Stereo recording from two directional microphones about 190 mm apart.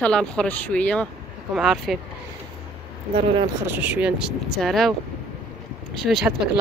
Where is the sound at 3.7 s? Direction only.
10° right (ahead or behind).